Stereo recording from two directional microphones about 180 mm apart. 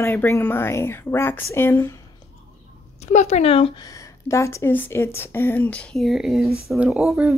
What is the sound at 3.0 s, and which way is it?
Speech, 40° left (ahead or behind).